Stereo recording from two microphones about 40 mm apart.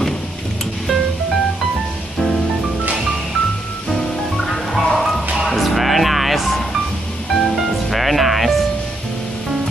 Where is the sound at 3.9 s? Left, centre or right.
Centre.